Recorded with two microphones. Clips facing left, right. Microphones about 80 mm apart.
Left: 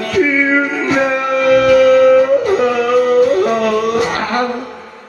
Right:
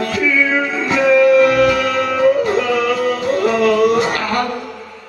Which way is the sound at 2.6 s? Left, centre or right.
Left.